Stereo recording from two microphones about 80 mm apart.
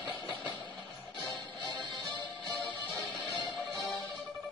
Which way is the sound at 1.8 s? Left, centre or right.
Right.